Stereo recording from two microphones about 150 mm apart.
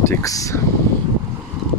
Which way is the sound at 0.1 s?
20° left (ahead or behind).